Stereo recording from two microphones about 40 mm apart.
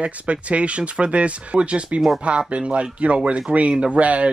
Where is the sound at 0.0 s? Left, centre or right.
Right.